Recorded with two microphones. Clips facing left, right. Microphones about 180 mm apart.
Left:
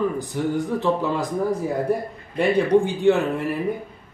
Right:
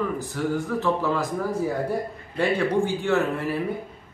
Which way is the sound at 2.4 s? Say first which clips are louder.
Left 4 dB; 15° left (ahead or behind).